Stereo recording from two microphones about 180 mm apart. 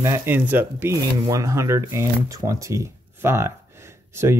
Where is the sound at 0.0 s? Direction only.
15° right (ahead or behind).